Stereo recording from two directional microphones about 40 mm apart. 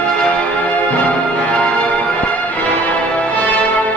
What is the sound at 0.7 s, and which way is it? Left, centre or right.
Music, left.